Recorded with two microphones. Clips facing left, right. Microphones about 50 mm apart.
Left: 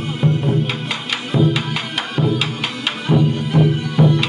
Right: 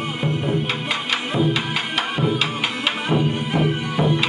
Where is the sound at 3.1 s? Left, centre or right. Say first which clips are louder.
Left 6 dB; right.